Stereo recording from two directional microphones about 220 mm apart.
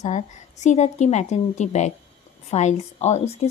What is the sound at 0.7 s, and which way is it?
A woman's voice, 30° left (ahead or behind).